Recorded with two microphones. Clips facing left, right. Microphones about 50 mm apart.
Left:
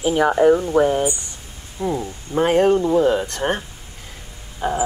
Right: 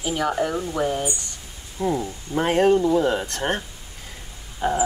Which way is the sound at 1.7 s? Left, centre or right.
Centre.